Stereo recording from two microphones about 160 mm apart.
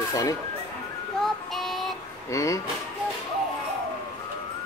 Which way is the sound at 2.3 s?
20° left (ahead or behind).